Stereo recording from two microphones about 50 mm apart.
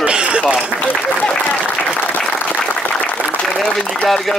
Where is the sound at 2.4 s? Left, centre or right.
Left.